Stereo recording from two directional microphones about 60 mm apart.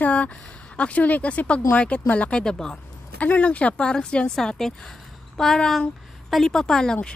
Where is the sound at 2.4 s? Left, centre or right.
Centre.